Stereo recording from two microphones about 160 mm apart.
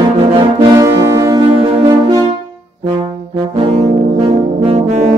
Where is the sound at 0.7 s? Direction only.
20° right (ahead or behind).